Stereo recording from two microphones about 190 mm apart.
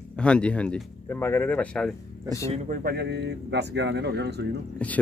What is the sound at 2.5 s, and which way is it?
Speech, 50° right (ahead or behind).